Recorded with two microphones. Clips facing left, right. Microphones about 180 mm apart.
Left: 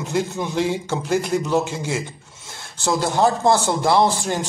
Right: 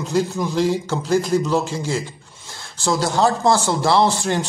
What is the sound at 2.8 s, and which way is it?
Speech, 20° left (ahead or behind).